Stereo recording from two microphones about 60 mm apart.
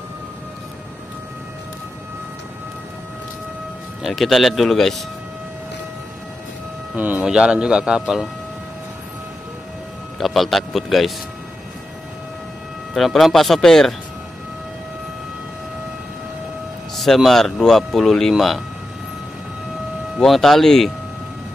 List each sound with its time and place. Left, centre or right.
4.0 s speech: centre
7.0 s speech: right
7.2 s a man's voice: centre
10.1 s speech: centre
12.9 s speech: centre
16.9 s speech: centre
20.2 s speech: centre